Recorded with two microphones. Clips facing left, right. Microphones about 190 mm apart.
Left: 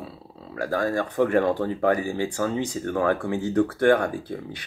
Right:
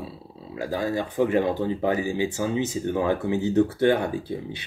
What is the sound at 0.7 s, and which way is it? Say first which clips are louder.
Speech: left 2 dB; 50° left (ahead or behind).